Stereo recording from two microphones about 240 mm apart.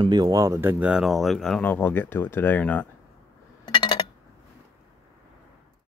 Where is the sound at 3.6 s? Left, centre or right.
Centre.